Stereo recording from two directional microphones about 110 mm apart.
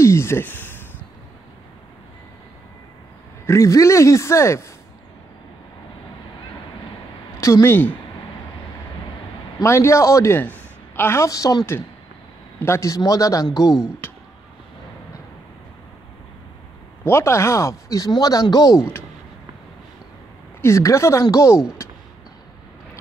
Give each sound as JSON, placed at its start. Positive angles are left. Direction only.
{"t": 0.0, "sound": "a sound", "side_deg": 25}
{"t": 3.4, "sound": "a man's voice", "side_deg": 25}
{"t": 7.3, "sound": "speech", "side_deg": 25}
{"t": 9.6, "sound": "a woman's voice", "side_deg": 25}
{"t": 17.0, "sound": "speech", "side_deg": 25}
{"t": 20.6, "sound": "a man's voice", "side_deg": 25}